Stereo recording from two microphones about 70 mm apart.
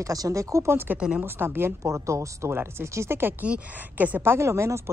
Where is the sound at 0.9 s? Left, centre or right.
Centre.